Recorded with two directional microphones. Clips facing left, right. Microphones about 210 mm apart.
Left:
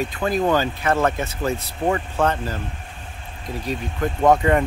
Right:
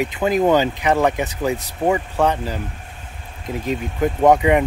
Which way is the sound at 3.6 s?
20° right (ahead or behind).